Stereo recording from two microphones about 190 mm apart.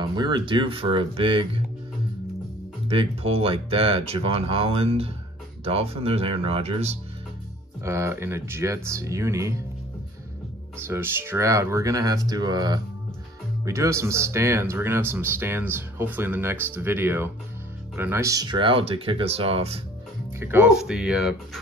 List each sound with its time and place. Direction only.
0.0 s speech: 25° right (ahead or behind)
2.9 s speech: 30° right (ahead or behind)
7.8 s speech: 15° right (ahead or behind)
10.9 s speech: 10° right (ahead or behind); by 19.8 s 30° right (ahead or behind)
20.3 s speech: 10° right (ahead or behind)